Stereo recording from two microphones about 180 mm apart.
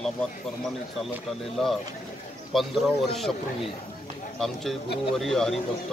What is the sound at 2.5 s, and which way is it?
Speech, centre (ahead or behind).